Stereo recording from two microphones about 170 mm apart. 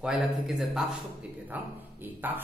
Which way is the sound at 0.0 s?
Centre (ahead or behind).